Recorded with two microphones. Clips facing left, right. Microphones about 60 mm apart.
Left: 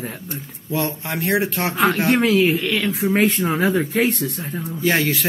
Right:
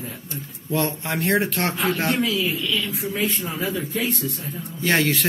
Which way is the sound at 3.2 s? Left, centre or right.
Left.